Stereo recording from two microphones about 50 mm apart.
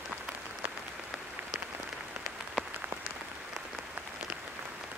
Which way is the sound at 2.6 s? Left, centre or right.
Centre.